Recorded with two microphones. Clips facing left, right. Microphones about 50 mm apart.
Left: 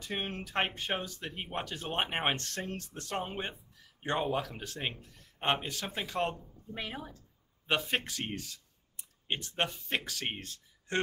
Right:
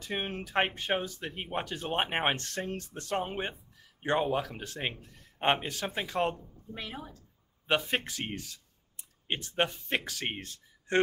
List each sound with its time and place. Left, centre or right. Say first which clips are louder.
0.0 s a man's voice: right 2 dB; centre
5.0 s a man's voice: right 5 dB; right
6.1 s a man's voice: right 2 dB; centre
6.7 s speech: left 1 dB; centre
7.6 s a man's voice: right 2 dB; centre
9.6 s speech: right 4 dB; centre